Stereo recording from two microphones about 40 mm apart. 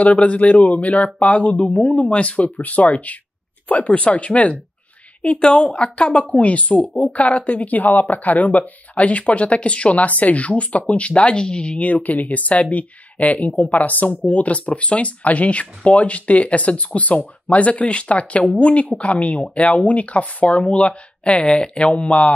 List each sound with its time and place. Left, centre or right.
0.0 s speech: left